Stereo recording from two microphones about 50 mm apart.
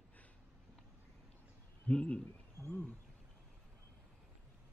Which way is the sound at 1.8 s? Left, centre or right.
Left.